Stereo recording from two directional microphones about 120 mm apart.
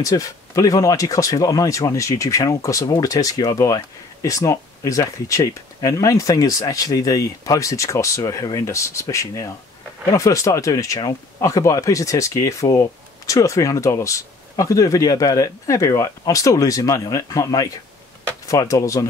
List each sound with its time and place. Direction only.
0.0 s speech: 30° left (ahead or behind)